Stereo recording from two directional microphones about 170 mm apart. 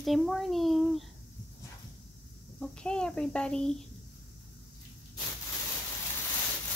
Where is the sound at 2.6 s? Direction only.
5° left (ahead or behind).